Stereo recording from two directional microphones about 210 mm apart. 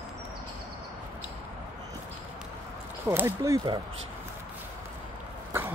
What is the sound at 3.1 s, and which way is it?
Speech, 15° right (ahead or behind).